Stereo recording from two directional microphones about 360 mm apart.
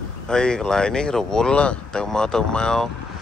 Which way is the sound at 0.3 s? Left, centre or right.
Centre.